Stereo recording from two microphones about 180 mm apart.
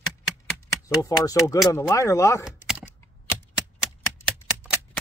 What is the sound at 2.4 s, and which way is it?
Computer keyboard, 5° right (ahead or behind).